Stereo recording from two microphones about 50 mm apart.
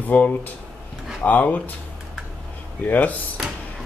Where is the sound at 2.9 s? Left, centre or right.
Left.